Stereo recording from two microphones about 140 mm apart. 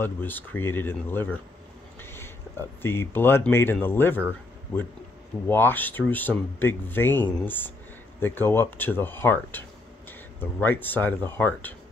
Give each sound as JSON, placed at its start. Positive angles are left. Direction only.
{"t": 0.0, "sound": "speech", "side_deg": 15}
{"t": 2.0, "sound": "a sound", "side_deg": 15}
{"t": 2.8, "sound": "speech", "side_deg": 15}
{"t": 5.5, "sound": "speech", "side_deg": 15}